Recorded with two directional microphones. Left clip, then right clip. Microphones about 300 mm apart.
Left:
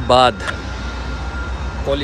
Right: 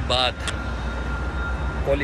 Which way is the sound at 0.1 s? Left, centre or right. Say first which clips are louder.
Left 10 dB; left.